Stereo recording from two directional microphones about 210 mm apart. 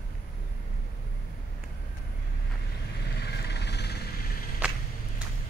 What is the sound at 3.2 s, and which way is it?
Vehicle, 50° left (ahead or behind).